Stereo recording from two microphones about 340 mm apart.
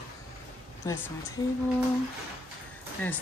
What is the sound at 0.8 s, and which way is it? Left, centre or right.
Speech, centre.